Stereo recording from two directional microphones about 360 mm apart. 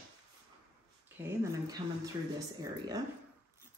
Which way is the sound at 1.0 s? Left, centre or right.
Centre.